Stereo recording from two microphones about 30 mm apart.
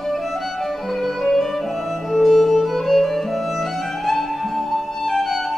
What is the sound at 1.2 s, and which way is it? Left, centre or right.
Music, centre.